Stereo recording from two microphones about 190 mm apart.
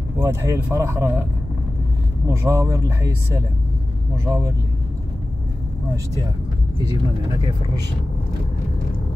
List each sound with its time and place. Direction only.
0.2 s speech: 15° right (ahead or behind)
2.2 s speech: 15° right (ahead or behind)